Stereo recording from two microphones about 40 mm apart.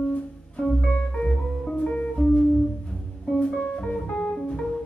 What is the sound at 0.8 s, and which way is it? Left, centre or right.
Music, left.